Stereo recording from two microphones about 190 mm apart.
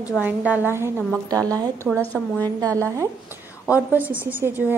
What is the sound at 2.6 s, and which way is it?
Speech, 15° right (ahead or behind).